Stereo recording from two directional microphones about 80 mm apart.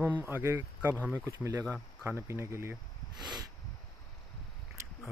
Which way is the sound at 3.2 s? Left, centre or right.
Right.